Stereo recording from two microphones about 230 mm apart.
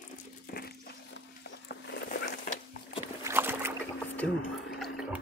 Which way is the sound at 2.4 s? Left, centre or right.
Left.